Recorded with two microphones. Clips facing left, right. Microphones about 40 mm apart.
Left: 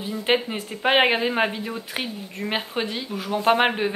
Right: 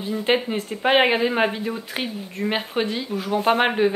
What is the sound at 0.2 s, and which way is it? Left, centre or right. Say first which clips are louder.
Speech: right 1 dB; centre.